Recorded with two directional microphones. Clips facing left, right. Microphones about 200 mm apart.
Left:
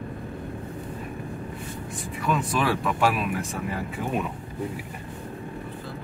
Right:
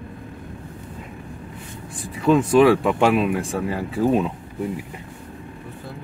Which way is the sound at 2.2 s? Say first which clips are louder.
Right 11 dB; 30° right (ahead or behind).